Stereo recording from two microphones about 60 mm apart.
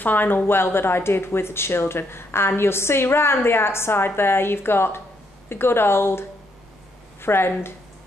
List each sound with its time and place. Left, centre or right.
0.0 s speech: left